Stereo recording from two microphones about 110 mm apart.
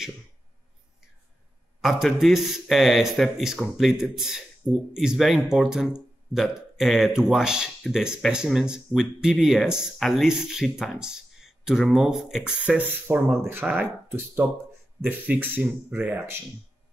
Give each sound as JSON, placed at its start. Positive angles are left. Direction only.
{"t": 1.8, "sound": "speech", "side_deg": 0}